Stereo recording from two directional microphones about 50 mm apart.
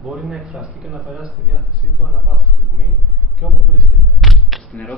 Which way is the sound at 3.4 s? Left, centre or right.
Right.